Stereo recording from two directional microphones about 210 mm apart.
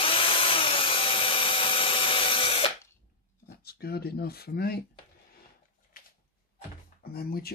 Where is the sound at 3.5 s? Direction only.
50° left (ahead or behind).